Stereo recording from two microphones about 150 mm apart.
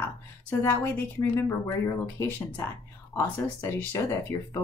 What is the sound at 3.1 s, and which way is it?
Speech, 25° left (ahead or behind).